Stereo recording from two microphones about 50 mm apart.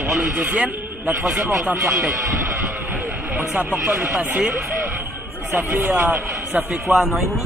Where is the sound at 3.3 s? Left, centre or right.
Right.